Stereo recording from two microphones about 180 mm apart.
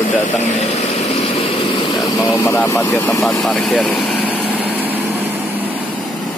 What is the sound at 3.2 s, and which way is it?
Vehicle, centre (ahead or behind).